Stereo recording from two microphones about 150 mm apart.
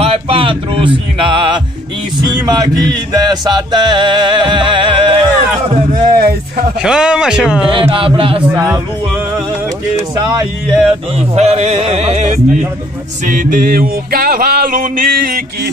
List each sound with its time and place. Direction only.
0.0 s mantra: 40° right (ahead or behind)
2.2 s music: 30° right (ahead or behind)
5.9 s speech: 75° right (ahead or behind)
6.8 s speech: 5° right (ahead or behind)
7.7 s speech: 35° right (ahead or behind)
8.5 s music: 20° right (ahead or behind)
11.1 s music: 45° right (ahead or behind)
13.2 s music: 65° right (ahead or behind)